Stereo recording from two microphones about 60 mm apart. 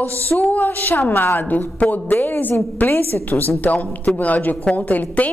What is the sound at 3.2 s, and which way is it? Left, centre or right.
A woman's voice, left.